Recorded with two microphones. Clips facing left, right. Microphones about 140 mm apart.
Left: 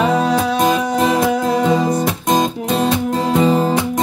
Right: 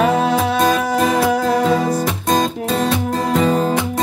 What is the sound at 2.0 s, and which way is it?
Music, 15° left (ahead or behind).